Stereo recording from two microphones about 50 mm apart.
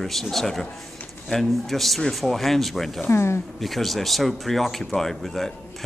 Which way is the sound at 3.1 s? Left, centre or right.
Left.